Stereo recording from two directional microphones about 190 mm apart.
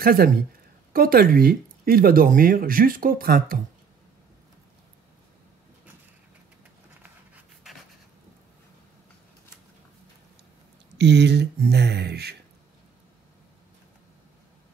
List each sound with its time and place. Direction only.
0.0 s speech: 50° right (ahead or behind)
11.0 s speech: 65° right (ahead or behind)